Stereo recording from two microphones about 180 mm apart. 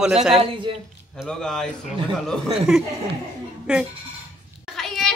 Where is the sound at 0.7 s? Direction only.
30° right (ahead or behind).